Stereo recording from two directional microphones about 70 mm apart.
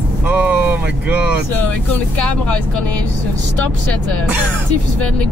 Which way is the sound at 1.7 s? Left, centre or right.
Centre.